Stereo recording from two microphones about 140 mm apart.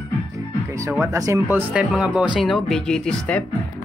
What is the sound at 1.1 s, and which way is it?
Speech, 20° right (ahead or behind).